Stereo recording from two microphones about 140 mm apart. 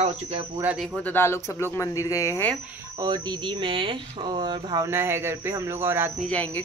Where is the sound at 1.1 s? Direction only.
15° left (ahead or behind).